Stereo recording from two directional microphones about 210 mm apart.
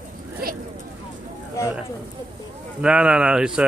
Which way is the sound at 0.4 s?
45° right (ahead or behind).